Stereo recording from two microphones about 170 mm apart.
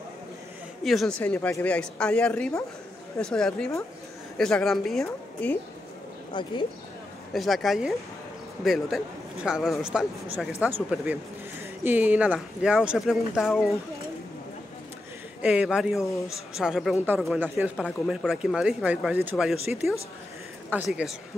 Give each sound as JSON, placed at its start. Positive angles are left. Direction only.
{"t": 0.8, "sound": "speech", "side_deg": 0}
{"t": 6.4, "sound": "speech", "side_deg": 25}
{"t": 7.3, "sound": "speech", "side_deg": 0}
{"t": 15.4, "sound": "speech", "side_deg": -5}
{"t": 20.7, "sound": "speech", "side_deg": -5}